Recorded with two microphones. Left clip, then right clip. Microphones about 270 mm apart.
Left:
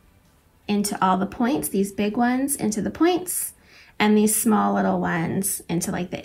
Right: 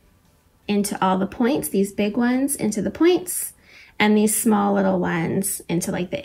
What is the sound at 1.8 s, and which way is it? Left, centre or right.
Speech, centre.